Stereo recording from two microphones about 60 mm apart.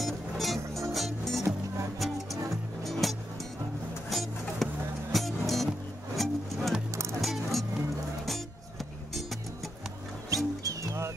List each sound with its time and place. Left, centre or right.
0.0 s music: centre
2.8 s music: centre
10.3 s music: right